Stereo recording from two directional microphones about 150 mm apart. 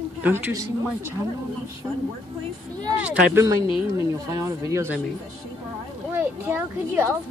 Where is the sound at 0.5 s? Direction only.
20° right (ahead or behind).